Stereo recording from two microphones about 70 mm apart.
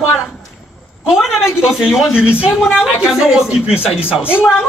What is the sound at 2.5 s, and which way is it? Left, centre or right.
A woman's voice, centre.